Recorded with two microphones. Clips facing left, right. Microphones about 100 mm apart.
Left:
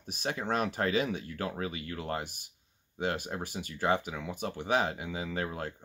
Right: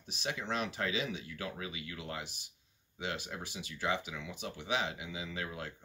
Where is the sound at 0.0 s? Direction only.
50° left (ahead or behind).